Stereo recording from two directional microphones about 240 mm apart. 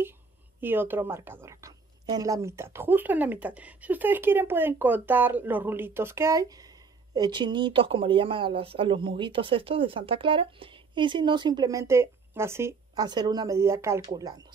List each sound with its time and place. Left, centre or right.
0.6 s a woman's voice: centre